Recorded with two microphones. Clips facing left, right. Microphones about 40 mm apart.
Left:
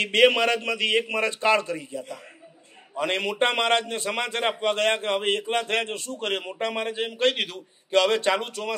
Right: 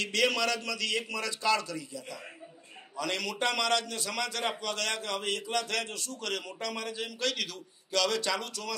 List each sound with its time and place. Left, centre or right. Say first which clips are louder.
0.0 s a man's voice: left 9 dB; left